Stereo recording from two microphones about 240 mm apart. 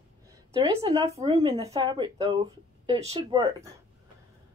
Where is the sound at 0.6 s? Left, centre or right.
Centre.